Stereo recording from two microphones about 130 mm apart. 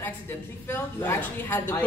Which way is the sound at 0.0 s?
15° left (ahead or behind).